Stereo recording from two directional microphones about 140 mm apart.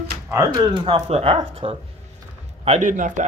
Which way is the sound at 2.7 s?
65° right (ahead or behind).